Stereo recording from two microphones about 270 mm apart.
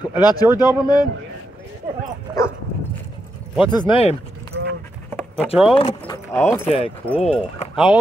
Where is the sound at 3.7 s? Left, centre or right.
Centre.